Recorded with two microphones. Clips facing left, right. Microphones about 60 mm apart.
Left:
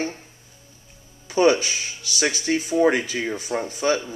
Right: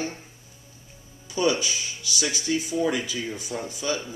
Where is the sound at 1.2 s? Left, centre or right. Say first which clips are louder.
Left 6 dB; left.